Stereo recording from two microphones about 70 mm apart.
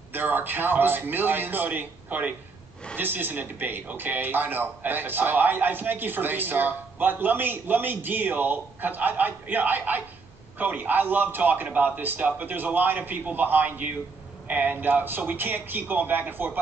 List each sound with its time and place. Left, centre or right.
0.1 s speech: right